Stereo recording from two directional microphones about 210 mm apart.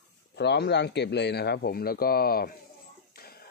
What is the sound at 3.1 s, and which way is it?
Music, 45° left (ahead or behind).